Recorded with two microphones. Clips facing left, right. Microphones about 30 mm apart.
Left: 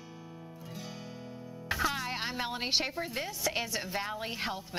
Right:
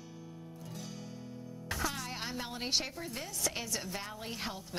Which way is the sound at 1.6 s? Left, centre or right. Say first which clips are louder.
Left 5 dB; left.